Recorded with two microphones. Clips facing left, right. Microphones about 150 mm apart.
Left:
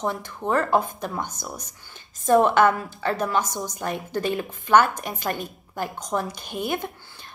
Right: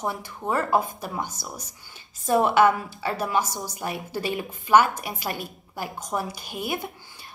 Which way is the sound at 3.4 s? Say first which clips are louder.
Left 3 dB; 20° left (ahead or behind).